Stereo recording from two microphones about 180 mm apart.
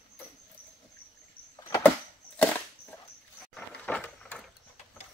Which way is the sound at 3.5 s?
5° left (ahead or behind).